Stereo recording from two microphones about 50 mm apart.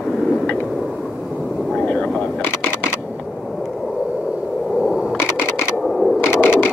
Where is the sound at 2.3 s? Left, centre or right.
Left.